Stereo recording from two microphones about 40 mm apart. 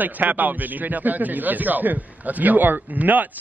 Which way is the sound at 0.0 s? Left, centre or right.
Right.